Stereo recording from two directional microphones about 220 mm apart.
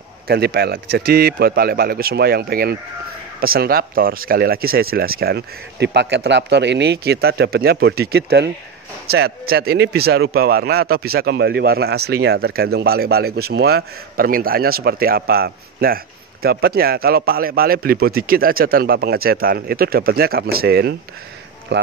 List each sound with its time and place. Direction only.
0.3 s speech: 45° right (ahead or behind)